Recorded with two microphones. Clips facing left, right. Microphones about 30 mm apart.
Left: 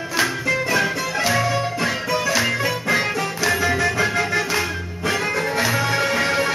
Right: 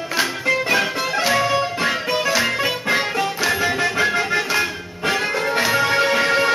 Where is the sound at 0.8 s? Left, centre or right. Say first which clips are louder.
Right 1 dB; right.